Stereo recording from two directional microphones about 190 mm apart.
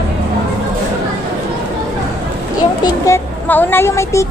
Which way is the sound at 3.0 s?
10° left (ahead or behind).